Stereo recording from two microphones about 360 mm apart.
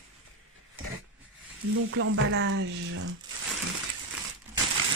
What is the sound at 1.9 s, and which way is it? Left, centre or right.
Speech, right.